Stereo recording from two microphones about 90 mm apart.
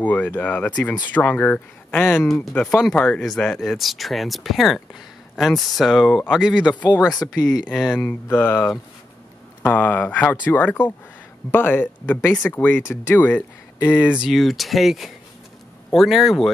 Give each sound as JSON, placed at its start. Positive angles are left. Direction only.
{"t": 0.0, "sound": "speech", "side_deg": 20}
{"t": 2.0, "sound": "speech", "side_deg": 5}
{"t": 8.0, "sound": "speech", "side_deg": 20}
{"t": 13.1, "sound": "speech", "side_deg": 20}
{"t": 14.1, "sound": "speech", "side_deg": -5}